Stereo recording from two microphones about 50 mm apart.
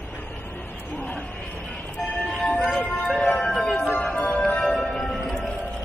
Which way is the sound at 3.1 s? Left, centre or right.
Centre.